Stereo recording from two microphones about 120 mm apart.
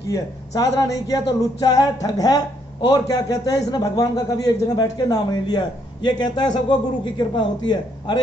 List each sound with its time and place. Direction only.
0.1 s speech: 30° left (ahead or behind)